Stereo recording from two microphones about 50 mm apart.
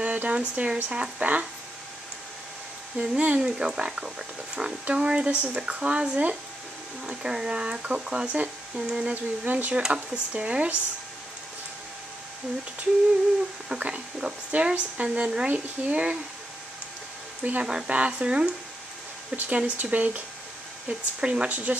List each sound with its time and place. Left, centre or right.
0.0 s speech: right
3.0 s speech: right
3.3 s speech: centre
7.2 s speech: centre
9.1 s speech: right
13.7 s speech: right
17.4 s speech: right
21.2 s speech: right